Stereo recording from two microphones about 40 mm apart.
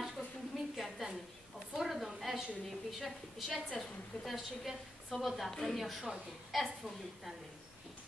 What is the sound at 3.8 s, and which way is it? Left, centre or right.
Speech, centre.